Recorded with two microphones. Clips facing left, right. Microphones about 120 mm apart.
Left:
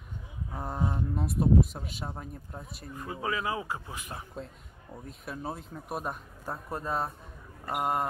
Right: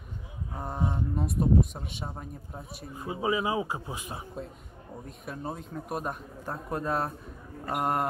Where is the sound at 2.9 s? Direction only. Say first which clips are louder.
Right 4 dB; 15° right (ahead or behind).